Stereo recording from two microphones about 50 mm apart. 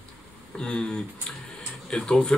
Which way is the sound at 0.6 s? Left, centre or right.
Centre.